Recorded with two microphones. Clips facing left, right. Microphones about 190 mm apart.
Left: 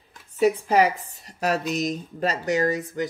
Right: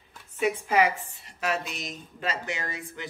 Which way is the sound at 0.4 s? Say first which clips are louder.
Left 5 dB; 40° left (ahead or behind).